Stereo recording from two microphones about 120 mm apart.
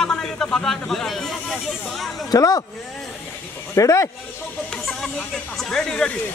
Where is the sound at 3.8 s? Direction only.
25° left (ahead or behind).